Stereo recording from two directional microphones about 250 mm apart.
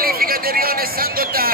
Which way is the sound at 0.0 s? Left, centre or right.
Right.